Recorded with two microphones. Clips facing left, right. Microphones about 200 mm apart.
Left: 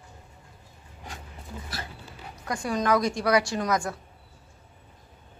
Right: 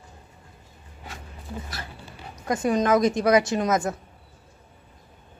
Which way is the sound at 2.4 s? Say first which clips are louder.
Right 6 dB; 20° right (ahead or behind).